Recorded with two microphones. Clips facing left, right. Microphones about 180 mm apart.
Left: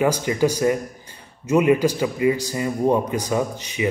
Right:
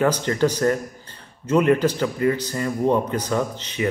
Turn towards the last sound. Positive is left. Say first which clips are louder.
# left 1 dB
turn(degrees=10)  # may be behind; listen again after turning